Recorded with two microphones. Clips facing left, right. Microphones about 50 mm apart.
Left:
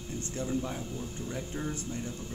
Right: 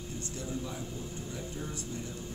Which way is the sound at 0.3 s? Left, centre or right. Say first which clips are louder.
Left 6 dB; left.